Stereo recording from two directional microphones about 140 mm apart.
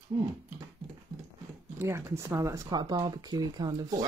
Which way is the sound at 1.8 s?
20° right (ahead or behind).